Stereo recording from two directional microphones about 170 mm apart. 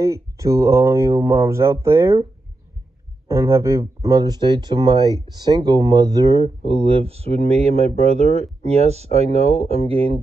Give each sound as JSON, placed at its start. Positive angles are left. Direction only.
{"t": 0.0, "sound": "speech", "side_deg": -20}
{"t": 3.3, "sound": "speech", "side_deg": -15}